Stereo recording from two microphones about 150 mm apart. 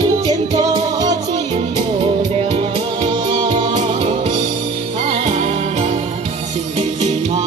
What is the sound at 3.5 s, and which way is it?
Music, 45° right (ahead or behind).